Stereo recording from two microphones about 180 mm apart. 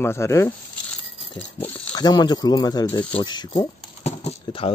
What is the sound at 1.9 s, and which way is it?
Speech, 20° left (ahead or behind).